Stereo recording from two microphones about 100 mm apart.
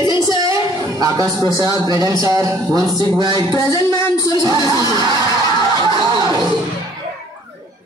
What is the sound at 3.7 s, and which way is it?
Speech, 30° left (ahead or behind).